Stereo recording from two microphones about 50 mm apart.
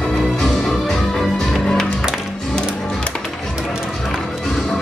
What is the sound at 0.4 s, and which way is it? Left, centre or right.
Music, centre.